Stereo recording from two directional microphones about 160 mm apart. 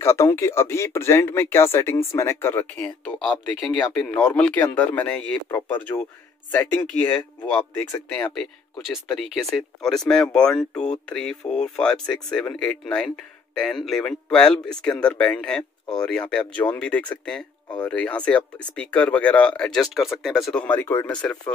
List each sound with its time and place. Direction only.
0.0 s speech: 20° left (ahead or behind)
8.4 s speech: centre (ahead or behind)